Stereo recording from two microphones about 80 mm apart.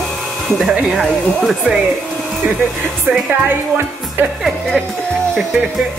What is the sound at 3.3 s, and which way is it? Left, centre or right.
A woman's voice, right.